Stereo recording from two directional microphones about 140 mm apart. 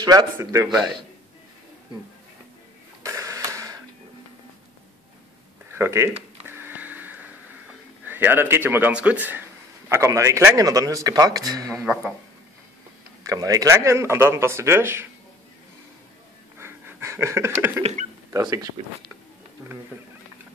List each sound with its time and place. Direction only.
0.0 s a man's voice: 30° right (ahead or behind)
3.0 s a sound: 20° right (ahead or behind)
5.7 s speech: 15° right (ahead or behind)
6.5 s a sound: 15° right (ahead or behind)
8.0 s a man's voice: 15° right (ahead or behind)
11.8 s speech: 5° right (ahead or behind)
13.2 s a man's voice: 25° right (ahead or behind)
16.5 s a sound: 20° right (ahead or behind)
18.3 s a man's voice: 25° right (ahead or behind)